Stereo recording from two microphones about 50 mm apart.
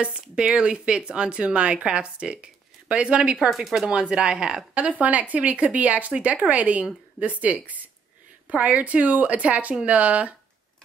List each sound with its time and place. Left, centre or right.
0.0 s speech: centre
3.3 s speech: centre
3.8 s speech: centre
4.7 s a woman's voice: right